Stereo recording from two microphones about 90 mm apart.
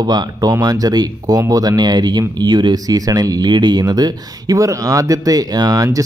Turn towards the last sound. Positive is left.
turn(degrees=-45)  # may be behind; listen again after turning